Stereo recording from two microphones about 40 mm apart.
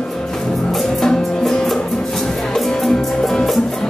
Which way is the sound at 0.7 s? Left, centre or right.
Centre.